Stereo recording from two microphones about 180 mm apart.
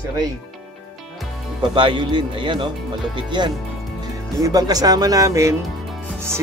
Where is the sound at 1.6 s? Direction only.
25° right (ahead or behind).